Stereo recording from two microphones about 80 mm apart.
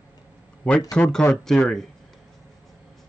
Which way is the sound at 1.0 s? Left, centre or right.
Centre.